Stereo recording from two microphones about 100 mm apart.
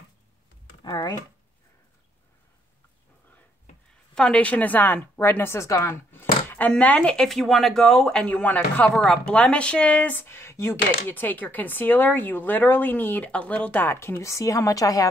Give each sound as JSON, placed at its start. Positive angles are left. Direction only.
{"t": 0.8, "sound": "speech", "side_deg": 45}
{"t": 4.1, "sound": "speech", "side_deg": 10}
{"t": 6.1, "sound": "a sound", "side_deg": 20}
{"t": 6.7, "sound": "speech", "side_deg": 10}